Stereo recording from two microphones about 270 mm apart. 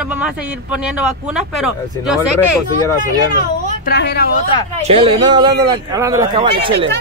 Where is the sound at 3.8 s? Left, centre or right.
Left.